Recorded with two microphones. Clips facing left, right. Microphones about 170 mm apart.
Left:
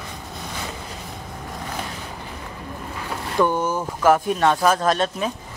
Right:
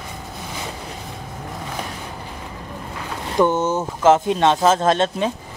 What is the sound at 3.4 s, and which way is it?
A man's voice, 25° right (ahead or behind).